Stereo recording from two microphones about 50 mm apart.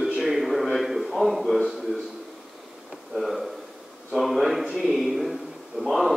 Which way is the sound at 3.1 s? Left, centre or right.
Centre.